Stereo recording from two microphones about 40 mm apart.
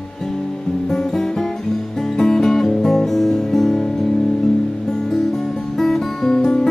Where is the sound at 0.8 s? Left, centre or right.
Centre.